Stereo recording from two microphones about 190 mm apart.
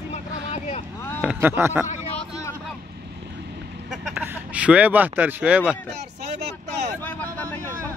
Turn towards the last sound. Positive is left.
turn(degrees=10)  # may be behind; listen again after turning